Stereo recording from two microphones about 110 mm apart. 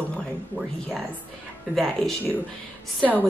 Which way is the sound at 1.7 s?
Centre (ahead or behind).